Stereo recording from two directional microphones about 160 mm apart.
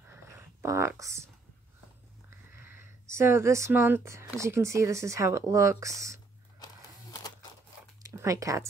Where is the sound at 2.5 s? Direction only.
15° right (ahead or behind).